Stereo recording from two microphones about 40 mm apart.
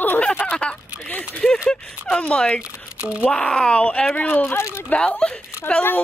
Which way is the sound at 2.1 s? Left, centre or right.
Left.